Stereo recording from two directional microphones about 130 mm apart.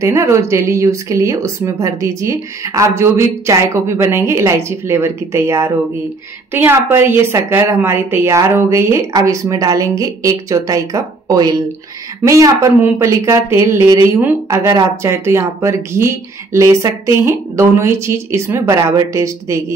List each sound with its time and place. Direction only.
0.0 s a woman's voice: 25° right (ahead or behind)